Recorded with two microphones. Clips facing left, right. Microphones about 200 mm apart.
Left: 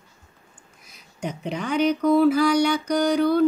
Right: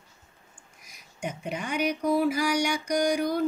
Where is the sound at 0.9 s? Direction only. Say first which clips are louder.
Left 4 dB; 10° right (ahead or behind).